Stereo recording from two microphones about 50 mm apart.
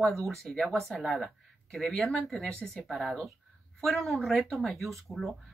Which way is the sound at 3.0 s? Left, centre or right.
Centre.